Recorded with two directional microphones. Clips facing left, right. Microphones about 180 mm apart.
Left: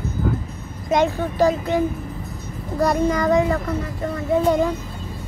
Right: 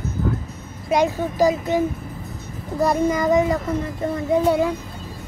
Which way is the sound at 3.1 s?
20° right (ahead or behind).